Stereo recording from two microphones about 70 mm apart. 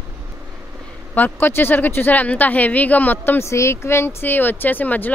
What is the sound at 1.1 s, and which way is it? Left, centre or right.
Speech, left.